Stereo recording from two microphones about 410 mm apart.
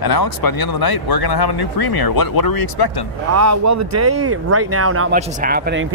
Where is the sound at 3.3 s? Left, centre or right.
Right.